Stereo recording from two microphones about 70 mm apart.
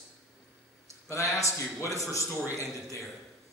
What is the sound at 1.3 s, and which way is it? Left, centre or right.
Speech, left.